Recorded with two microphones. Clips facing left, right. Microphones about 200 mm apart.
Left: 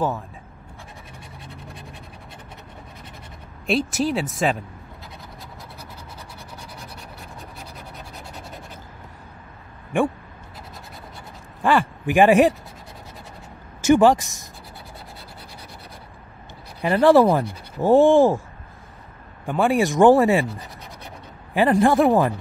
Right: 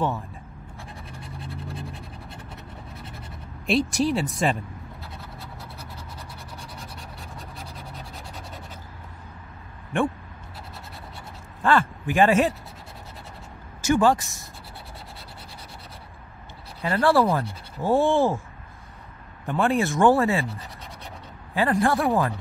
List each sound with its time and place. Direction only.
3.6 s speech: centre (ahead or behind)
11.6 s speech: 15° left (ahead or behind)
13.8 s speech: 20° left (ahead or behind)
16.8 s speech: 20° left (ahead or behind)
19.4 s speech: 10° left (ahead or behind)
21.5 s speech: 20° left (ahead or behind)